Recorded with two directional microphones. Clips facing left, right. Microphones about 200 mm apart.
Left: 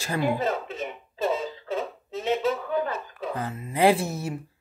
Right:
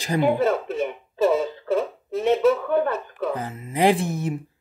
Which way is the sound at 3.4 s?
15° right (ahead or behind).